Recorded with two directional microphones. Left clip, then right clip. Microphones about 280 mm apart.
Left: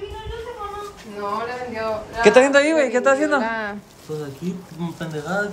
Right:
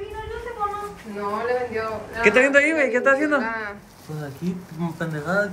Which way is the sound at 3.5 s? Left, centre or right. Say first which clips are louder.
Left 3 dB; left.